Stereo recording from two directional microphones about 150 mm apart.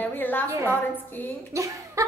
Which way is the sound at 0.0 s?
15° left (ahead or behind).